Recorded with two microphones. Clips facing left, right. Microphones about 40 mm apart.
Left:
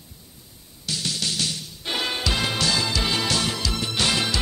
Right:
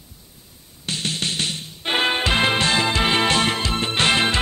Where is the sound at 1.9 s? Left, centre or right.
Right.